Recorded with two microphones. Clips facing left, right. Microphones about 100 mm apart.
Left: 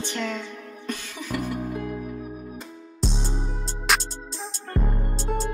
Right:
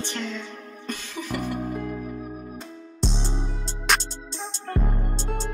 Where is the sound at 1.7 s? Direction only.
5° left (ahead or behind).